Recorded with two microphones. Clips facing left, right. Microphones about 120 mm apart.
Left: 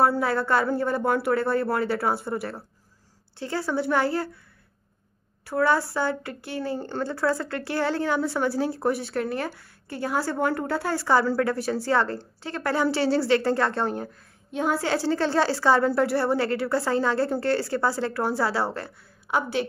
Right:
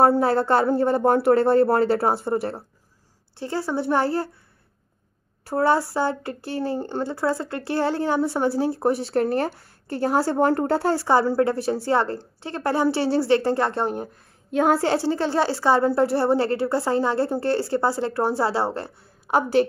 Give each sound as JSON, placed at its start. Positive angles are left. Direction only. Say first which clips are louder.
{"t": 0.0, "sound": "speech", "louder": "right 4 dB", "side_deg": -35}
{"t": 5.4, "sound": "speech", "louder": "right 2 dB", "side_deg": -35}